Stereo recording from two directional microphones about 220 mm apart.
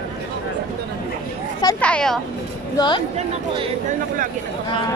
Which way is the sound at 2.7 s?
20° left (ahead or behind).